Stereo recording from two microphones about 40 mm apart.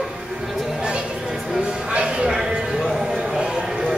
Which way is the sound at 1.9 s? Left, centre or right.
Right.